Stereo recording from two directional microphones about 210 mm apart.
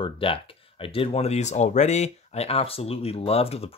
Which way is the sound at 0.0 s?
25° left (ahead or behind).